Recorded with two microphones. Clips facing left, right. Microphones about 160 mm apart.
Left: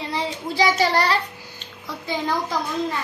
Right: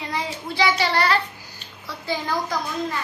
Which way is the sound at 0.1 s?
35° left (ahead or behind).